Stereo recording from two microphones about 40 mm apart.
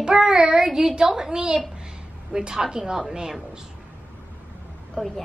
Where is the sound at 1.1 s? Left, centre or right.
Centre.